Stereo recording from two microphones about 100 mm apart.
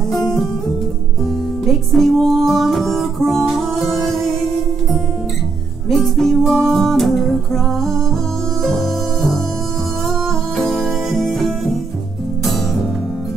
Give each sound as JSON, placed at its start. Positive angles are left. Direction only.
{"t": 0.1, "sound": "guitar", "side_deg": 35}
{"t": 1.7, "sound": "music", "side_deg": 0}
{"t": 5.9, "sound": "music", "side_deg": 0}
{"t": 8.6, "sound": "music", "side_deg": 0}